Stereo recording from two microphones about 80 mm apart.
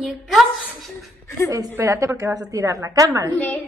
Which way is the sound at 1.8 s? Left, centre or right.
Right.